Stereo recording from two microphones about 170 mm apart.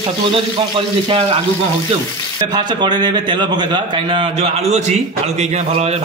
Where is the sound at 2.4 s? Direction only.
25° right (ahead or behind).